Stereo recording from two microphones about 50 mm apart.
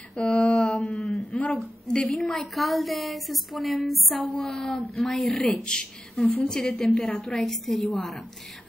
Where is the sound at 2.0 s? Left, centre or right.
Centre.